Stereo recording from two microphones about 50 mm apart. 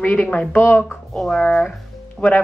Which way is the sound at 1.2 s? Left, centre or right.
Centre.